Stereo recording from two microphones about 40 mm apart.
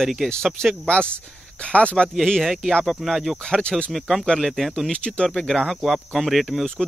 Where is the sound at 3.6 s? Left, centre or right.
Left.